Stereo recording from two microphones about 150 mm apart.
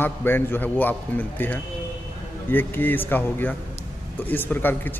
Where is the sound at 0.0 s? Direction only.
15° left (ahead or behind).